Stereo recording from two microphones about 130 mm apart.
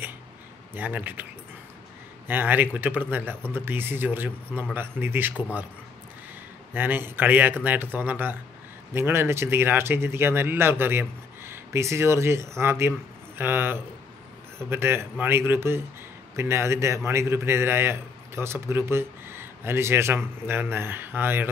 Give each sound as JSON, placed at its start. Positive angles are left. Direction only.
{"t": 0.7, "sound": "speech", "side_deg": -15}
{"t": 2.2, "sound": "speech", "side_deg": -15}
{"t": 6.7, "sound": "a man's voice", "side_deg": -15}